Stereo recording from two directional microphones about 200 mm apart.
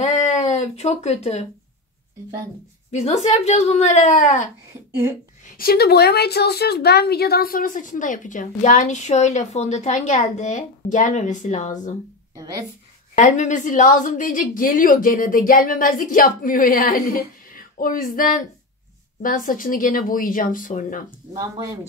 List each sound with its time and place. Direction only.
0.0 s speech: 35° left (ahead or behind)
2.9 s a woman's voice: 35° left (ahead or behind)
5.6 s a woman's voice: 50° left (ahead or behind)
13.1 s a woman's voice: 40° left (ahead or behind)